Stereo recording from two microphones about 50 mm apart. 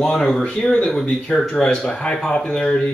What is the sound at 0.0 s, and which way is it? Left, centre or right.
Speech, centre.